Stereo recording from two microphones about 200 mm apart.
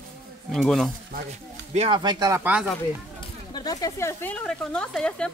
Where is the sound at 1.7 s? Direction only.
25° right (ahead or behind); by 2.7 s 10° right (ahead or behind).